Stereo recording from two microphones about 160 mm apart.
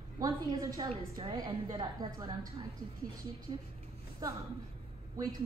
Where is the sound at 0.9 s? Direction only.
35° right (ahead or behind).